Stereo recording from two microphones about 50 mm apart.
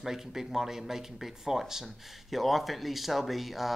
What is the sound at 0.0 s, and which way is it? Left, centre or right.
Speech, centre.